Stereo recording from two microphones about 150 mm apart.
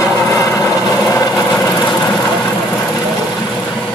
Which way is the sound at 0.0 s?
20° left (ahead or behind).